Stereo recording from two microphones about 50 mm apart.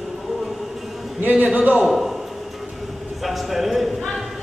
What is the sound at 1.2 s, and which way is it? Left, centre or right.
Speech, right.